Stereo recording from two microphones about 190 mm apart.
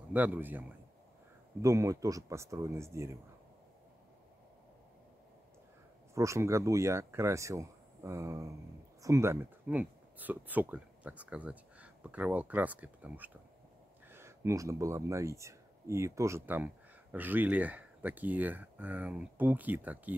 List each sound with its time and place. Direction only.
0.1 s speech: 10° right (ahead or behind)
6.1 s speech: 15° right (ahead or behind)